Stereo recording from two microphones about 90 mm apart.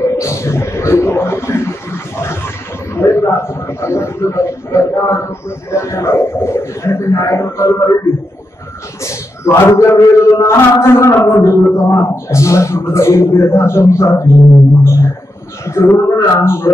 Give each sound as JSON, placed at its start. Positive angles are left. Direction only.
{"t": 0.2, "sound": "a sound", "side_deg": 30}
{"t": 2.9, "sound": "a man's voice", "side_deg": 30}
{"t": 9.0, "sound": "a man's voice", "side_deg": 30}